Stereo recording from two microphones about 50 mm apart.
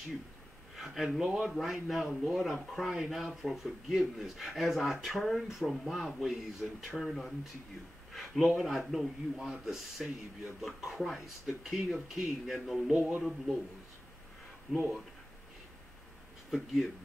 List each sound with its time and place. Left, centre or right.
0.7 s speech: centre
1.2 s a man's voice: centre
1.5 s speech: centre
14.7 s speech: centre
16.4 s speech: centre